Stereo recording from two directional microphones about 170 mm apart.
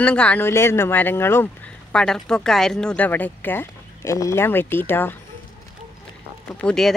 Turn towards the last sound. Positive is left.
turn(degrees=5)  # may be behind; listen again after turning